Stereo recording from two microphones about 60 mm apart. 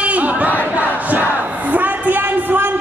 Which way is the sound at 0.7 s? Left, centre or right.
Right.